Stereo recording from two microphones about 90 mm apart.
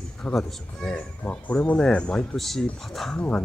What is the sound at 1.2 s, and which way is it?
Speech, 15° left (ahead or behind).